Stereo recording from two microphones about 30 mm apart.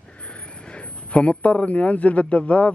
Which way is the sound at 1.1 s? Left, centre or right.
Left.